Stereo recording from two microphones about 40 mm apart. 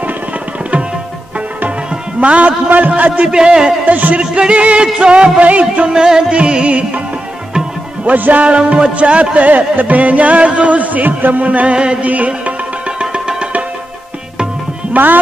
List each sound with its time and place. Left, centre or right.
2.1 s a man's voice: right
3.0 s music: right
3.3 s music: right
3.8 s music: right
4.2 s music: right
5.9 s music: centre
8.0 s music: right
8.5 s music: right
11.7 s music: right
14.9 s music: right